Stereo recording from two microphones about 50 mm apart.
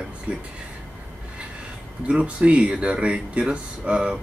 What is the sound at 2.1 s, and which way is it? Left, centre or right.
Speech, right.